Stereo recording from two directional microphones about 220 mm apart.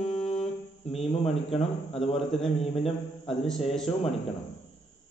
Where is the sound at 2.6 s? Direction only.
25° left (ahead or behind).